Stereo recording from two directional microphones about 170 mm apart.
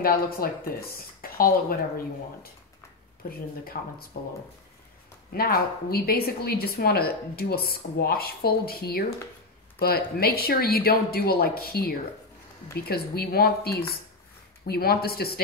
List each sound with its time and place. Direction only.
0.0 s a woman's voice: 60° left (ahead or behind)
3.8 s a woman's voice: 55° left (ahead or behind)
4.1 s a woman's voice: 70° left (ahead or behind)